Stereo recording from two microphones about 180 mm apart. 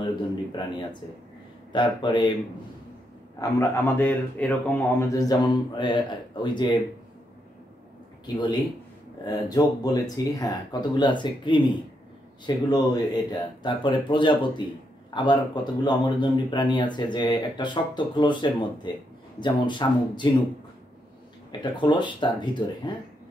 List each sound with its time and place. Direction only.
0.0 s speech: 25° left (ahead or behind)
3.3 s speech: 15° left (ahead or behind)
8.4 s speech: 20° left (ahead or behind)
21.5 s speech: 25° left (ahead or behind)